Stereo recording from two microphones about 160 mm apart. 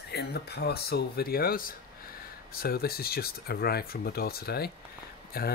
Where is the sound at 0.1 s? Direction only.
90° left.